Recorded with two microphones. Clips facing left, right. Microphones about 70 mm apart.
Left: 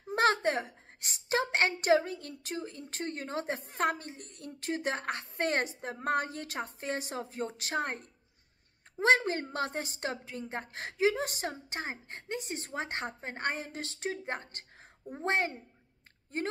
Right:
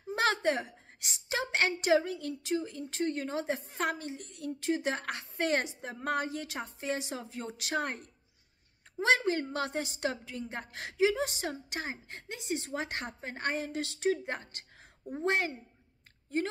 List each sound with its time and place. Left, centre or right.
0.1 s a woman's voice: left